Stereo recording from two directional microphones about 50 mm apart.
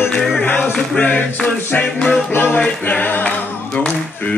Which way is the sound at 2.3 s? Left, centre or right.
Left.